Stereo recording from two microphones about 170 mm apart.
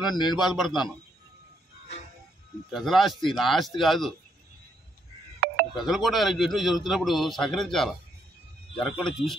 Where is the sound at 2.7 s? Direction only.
Centre (ahead or behind).